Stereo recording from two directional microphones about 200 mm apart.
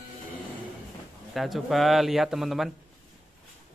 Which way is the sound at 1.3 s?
Centre (ahead or behind).